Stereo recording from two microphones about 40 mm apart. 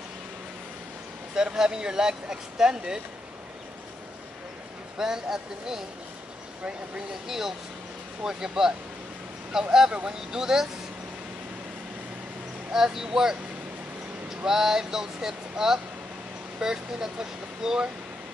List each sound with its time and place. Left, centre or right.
1.3 s speech: centre
4.9 s speech: centre
7.2 s speech: centre
12.7 s speech: centre